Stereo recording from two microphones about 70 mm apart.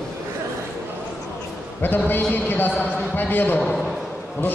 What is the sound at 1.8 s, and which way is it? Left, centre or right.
A man's voice, left.